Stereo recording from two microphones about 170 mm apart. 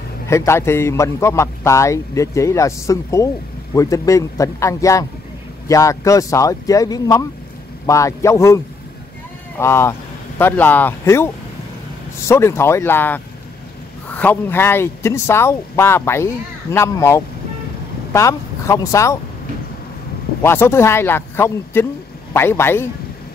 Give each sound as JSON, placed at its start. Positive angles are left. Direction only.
{"t": 0.3, "sound": "a man's voice", "side_deg": 15}
{"t": 20.4, "sound": "a man's voice", "side_deg": 15}